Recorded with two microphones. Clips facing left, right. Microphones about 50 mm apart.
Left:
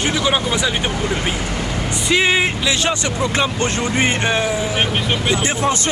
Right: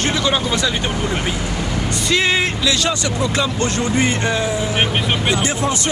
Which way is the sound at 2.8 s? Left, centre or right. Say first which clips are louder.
Even; left.